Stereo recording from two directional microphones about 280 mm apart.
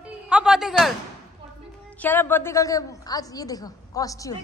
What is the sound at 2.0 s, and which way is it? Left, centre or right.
A woman's voice, centre.